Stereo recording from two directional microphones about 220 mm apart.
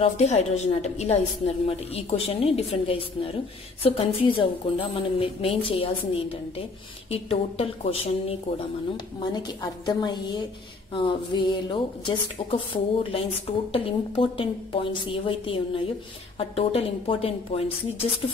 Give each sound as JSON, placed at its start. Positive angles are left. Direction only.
{"t": 0.0, "sound": "a woman's voice", "side_deg": 30}